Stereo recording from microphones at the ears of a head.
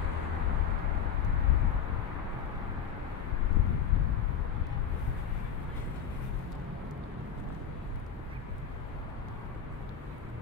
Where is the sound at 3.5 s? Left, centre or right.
Left.